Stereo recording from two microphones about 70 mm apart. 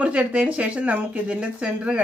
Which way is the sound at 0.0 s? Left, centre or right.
Centre.